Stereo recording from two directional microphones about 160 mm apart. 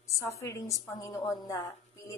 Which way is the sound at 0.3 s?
20° left (ahead or behind).